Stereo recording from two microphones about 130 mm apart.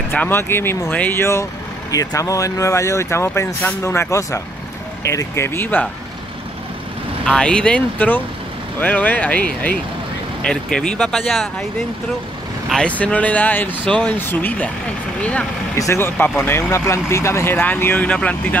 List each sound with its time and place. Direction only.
0.1 s speech: 15° left (ahead or behind)
7.2 s speech: 10° left (ahead or behind)
12.6 s speech: 5° left (ahead or behind)